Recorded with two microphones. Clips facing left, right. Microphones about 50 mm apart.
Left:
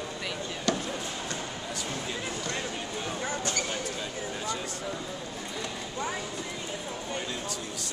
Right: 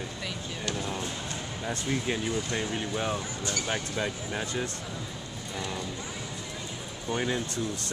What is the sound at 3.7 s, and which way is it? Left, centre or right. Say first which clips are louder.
Speech: right 3 dB; right.